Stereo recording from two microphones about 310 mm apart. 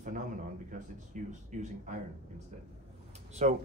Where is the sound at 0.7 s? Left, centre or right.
Right.